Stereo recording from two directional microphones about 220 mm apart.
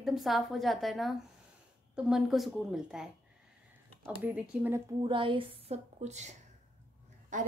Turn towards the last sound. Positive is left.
turn(degrees=-35)  # may be behind; listen again after turning